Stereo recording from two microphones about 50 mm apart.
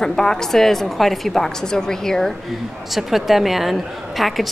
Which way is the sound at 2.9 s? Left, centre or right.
Centre.